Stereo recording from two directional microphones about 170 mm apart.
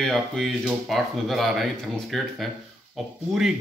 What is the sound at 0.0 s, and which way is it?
Speech, centre (ahead or behind).